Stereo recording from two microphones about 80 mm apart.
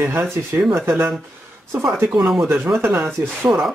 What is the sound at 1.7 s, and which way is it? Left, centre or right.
Speech, right.